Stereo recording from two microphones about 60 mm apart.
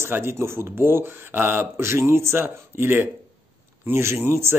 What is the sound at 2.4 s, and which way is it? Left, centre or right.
Speech, right.